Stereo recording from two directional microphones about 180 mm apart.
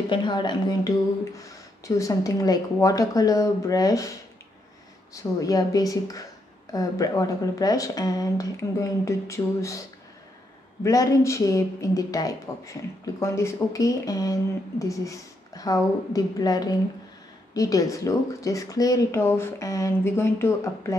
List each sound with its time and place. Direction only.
0.1 s speech: 25° left (ahead or behind)